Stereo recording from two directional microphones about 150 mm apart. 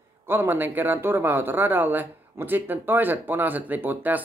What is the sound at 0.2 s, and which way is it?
Speech, 15° right (ahead or behind).